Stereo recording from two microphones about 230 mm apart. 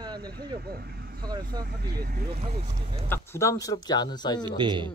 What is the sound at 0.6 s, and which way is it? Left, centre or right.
Speech, right.